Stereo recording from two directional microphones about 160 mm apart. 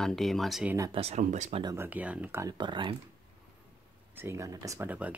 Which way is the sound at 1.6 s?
15° right (ahead or behind).